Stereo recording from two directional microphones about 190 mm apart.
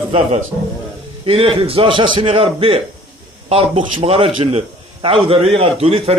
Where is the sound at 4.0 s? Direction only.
30° right (ahead or behind).